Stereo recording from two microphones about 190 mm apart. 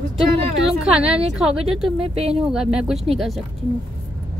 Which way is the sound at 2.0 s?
30° right (ahead or behind).